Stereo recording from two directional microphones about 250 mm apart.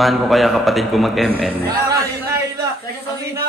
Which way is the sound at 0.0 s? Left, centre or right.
Centre.